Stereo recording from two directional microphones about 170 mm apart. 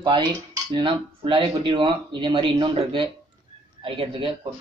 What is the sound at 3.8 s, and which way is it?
Speech, 30° right (ahead or behind).